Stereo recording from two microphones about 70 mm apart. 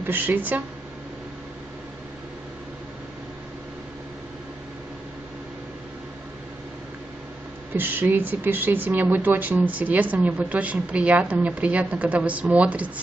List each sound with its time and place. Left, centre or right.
0.0 s speech: right
7.7 s speech: right